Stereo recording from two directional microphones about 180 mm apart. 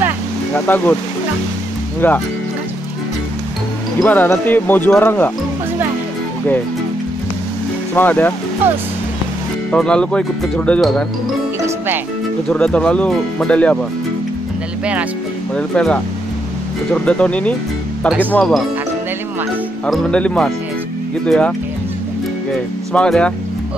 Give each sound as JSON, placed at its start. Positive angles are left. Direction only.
{"t": 0.6, "sound": "speech", "side_deg": 10}
{"t": 2.0, "sound": "speech", "side_deg": 10}
{"t": 4.0, "sound": "speech", "side_deg": 10}
{"t": 7.9, "sound": "speech", "side_deg": 10}
{"t": 9.7, "sound": "speech", "side_deg": 5}
{"t": 12.4, "sound": "speech", "side_deg": 5}
{"t": 15.5, "sound": "speech", "side_deg": 5}
{"t": 18.0, "sound": "speech", "side_deg": -10}
{"t": 18.3, "sound": "speech", "side_deg": 0}
{"t": 19.9, "sound": "speech", "side_deg": 5}